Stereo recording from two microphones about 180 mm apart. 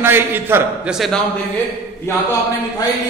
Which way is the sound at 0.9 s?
Centre (ahead or behind).